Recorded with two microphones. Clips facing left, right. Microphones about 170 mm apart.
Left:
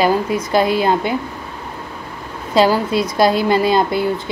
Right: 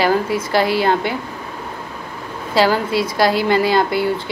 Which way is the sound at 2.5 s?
20° left (ahead or behind).